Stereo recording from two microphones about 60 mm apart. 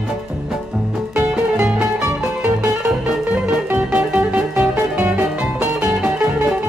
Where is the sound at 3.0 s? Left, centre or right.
Centre.